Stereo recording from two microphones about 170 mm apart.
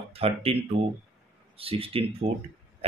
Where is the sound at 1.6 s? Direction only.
35° right (ahead or behind).